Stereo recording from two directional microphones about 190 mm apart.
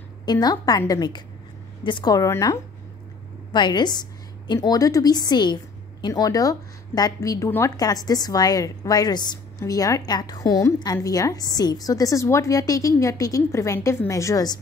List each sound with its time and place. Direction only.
0.2 s a woman's voice: 20° left (ahead or behind)